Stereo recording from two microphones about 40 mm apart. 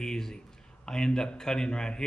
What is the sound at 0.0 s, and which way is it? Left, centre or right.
A man's voice, centre.